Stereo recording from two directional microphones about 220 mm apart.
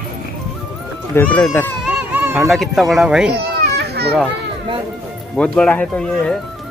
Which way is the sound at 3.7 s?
45° right (ahead or behind).